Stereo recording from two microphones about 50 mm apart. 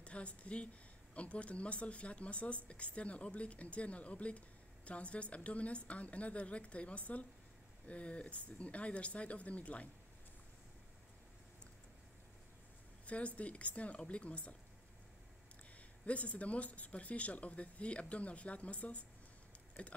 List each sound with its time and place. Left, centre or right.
0.0 s a woman's voice: left
13.0 s a woman's voice: left
16.1 s speech: left